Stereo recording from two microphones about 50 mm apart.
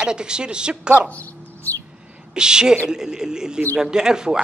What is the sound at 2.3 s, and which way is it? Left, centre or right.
Speech, centre.